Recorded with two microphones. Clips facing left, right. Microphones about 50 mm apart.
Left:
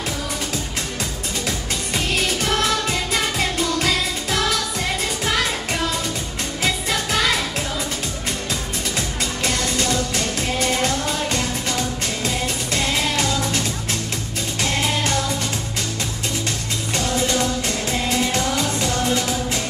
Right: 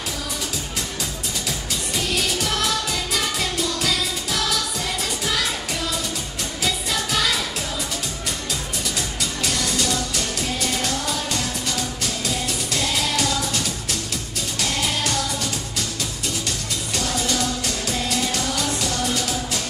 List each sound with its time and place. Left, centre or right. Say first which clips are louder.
3.1 s music: left 3 dB; left
6.6 s music of asia: left 2 dB; left
10.6 s music: left 6 dB; left
12.7 s music: left 2 dB; left
16.9 s music: left 3 dB; left